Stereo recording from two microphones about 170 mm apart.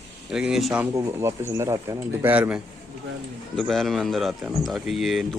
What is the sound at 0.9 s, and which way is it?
Speech, 20° right (ahead or behind).